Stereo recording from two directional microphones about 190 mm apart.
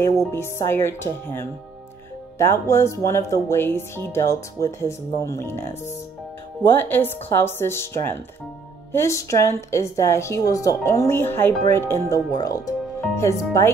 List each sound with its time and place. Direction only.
0.3 s speech: 15° left (ahead or behind)